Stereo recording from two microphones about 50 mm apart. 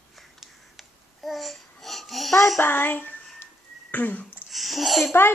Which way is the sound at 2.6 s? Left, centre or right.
Left.